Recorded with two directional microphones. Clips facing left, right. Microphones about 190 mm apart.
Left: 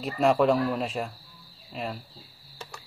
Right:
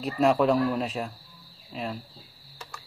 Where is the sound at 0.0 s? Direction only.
Centre (ahead or behind).